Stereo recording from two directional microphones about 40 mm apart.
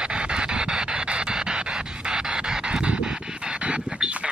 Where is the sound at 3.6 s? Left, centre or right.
Right.